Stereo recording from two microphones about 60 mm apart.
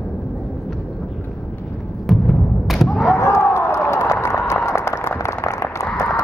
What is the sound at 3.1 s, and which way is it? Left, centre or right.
Run, left.